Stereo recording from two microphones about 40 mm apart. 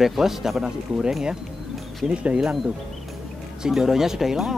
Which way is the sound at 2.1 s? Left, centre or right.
Right.